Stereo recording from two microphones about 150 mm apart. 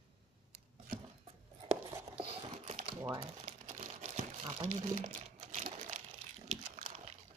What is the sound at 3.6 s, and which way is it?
Crumpling, 40° right (ahead or behind).